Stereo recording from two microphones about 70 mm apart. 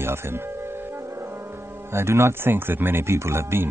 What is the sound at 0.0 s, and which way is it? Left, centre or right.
Speech, right.